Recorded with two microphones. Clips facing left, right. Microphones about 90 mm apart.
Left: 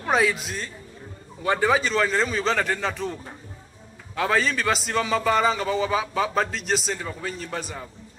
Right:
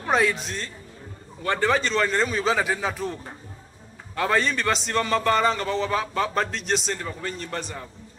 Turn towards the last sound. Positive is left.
turn(degrees=5)  # may be behind; listen again after turning